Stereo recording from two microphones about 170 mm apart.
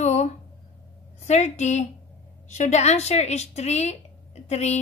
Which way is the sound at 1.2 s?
40° left (ahead or behind).